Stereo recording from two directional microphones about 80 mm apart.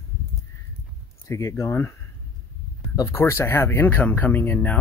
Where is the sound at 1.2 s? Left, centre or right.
Left.